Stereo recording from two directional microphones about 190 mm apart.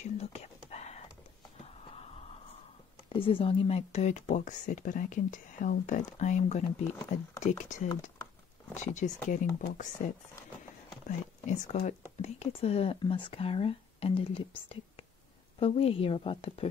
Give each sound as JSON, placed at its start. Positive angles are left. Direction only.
{"t": 0.0, "sound": "whispering", "side_deg": 35}
{"t": 1.6, "sound": "a sound", "side_deg": 30}
{"t": 3.1, "sound": "speech", "side_deg": 30}
{"t": 11.1, "sound": "speech", "side_deg": 40}